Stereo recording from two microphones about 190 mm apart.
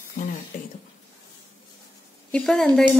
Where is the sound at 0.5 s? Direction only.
45° left (ahead or behind).